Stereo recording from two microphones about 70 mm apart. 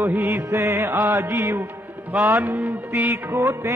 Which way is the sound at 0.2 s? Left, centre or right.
Right.